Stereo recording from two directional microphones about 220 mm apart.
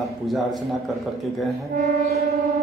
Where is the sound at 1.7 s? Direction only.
45° right (ahead or behind).